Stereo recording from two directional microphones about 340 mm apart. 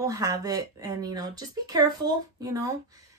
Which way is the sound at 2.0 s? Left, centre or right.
Right.